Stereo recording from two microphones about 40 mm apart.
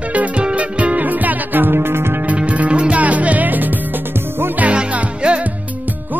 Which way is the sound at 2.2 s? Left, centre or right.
Right.